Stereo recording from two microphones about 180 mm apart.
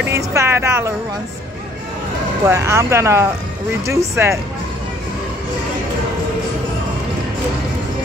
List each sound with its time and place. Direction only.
0.0 s speech: 15° right (ahead or behind)
2.4 s speech: 15° right (ahead or behind)